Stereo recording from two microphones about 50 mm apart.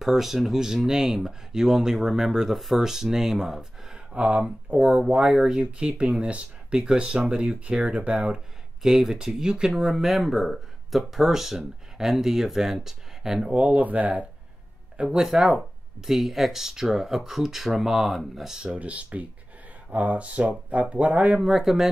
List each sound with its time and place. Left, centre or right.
0.0 s speech: centre
4.1 s speech: right
8.8 s speech: centre
9.7 s speech: centre
13.6 s speech: right
15.0 s speech: centre
18.6 s speech: right
21.4 s speech: centre